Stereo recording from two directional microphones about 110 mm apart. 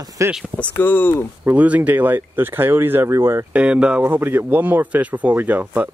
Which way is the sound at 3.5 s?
10° right (ahead or behind).